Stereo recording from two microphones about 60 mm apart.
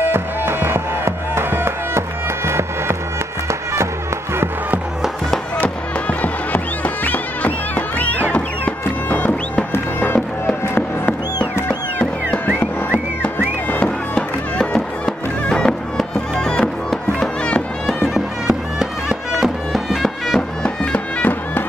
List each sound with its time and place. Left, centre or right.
0.0 s music: right
6.0 s music: left
12.5 s music: left
17.8 s bagpipes: centre
20.6 s music: centre
21.2 s bagpipes: left